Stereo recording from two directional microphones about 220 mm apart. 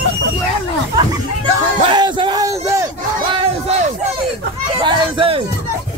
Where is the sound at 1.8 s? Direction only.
20° right (ahead or behind).